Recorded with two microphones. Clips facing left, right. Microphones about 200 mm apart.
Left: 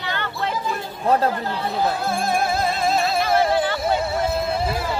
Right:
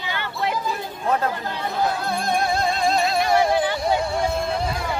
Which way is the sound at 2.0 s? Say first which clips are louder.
Left 1 dB; 5° left (ahead or behind).